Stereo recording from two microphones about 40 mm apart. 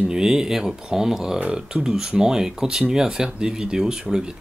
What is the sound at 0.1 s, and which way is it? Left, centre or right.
Speech, centre.